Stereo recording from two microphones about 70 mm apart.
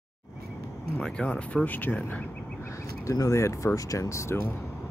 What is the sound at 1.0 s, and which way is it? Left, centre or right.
Speech, centre.